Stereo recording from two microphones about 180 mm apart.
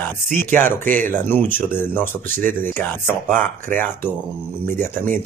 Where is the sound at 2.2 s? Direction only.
50° right (ahead or behind).